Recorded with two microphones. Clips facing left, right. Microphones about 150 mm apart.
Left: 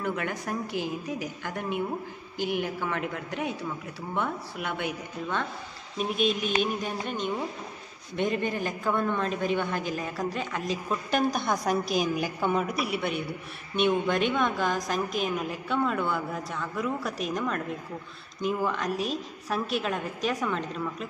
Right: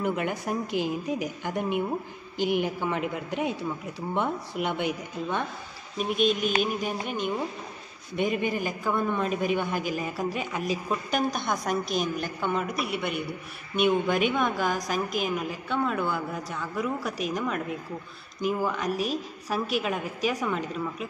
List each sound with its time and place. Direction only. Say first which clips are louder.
0.0 s a man's voice: right 3 dB; 15° right (ahead or behind)
5.9 s a woman's voice: right 2 dB; centre (ahead or behind)